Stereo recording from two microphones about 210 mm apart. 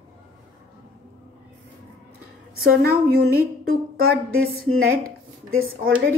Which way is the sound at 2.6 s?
45° right (ahead or behind).